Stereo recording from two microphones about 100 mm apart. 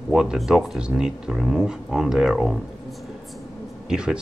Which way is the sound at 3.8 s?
5° right (ahead or behind).